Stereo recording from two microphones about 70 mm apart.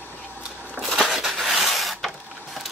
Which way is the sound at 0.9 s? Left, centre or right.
Centre.